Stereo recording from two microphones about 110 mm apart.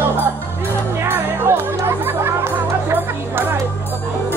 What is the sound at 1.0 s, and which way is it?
Music, 25° right (ahead or behind).